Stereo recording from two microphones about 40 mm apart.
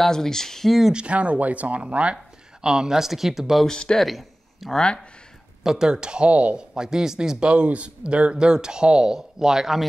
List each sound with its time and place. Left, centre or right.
0.0 s speech: centre
0.9 s speech: right
2.6 s speech: centre
3.6 s speech: centre
4.0 s a sound: centre
4.7 s speech: left
5.6 s speech: centre; by 6.6 s right
6.7 s speech: centre
7.3 s speech: right; by 9.8 s centre